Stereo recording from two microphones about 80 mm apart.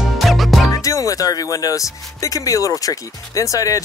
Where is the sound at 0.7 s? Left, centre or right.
Left.